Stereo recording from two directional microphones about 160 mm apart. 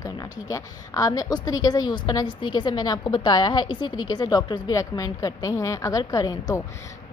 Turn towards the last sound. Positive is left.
turn(degrees=25)  # may be behind; listen again after turning